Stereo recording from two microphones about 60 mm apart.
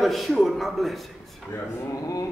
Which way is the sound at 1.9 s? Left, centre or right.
Left.